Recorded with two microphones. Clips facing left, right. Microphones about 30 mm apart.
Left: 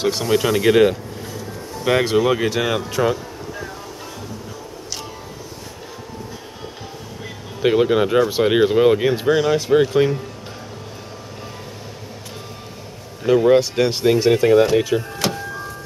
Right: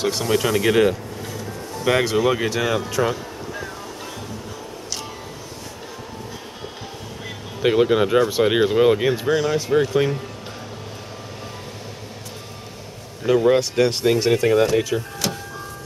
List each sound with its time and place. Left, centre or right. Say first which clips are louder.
0.0 s speech: left 2 dB; centre
7.6 s speech: left 1 dB; centre
9.1 s speech: left 3 dB; centre
9.9 s speech: left 3 dB; centre
13.2 s speech: left 3 dB; centre